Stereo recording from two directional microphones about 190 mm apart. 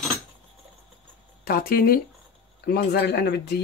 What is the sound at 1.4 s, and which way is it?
Speech, 50° left (ahead or behind).